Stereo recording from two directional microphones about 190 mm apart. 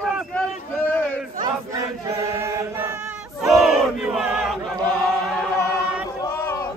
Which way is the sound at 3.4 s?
Centre (ahead or behind).